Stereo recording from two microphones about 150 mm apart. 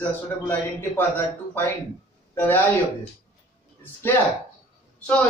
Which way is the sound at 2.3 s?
15° left (ahead or behind).